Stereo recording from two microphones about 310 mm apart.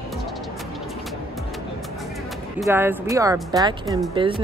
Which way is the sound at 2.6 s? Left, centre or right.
Centre.